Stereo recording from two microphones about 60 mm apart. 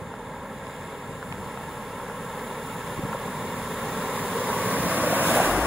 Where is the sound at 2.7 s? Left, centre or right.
Centre.